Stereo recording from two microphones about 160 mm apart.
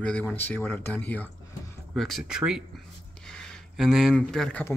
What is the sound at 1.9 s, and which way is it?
Speech, centre (ahead or behind).